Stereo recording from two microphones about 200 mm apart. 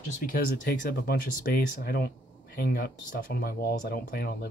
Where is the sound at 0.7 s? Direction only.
55° left (ahead or behind).